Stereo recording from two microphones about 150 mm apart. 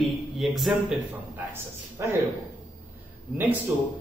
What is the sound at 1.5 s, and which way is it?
Speech, 20° right (ahead or behind).